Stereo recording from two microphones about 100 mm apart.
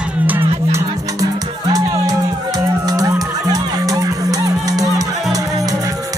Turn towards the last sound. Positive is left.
turn(degrees=-40)  # may be behind; listen again after turning